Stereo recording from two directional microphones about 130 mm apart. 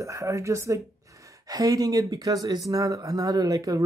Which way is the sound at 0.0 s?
25° right (ahead or behind).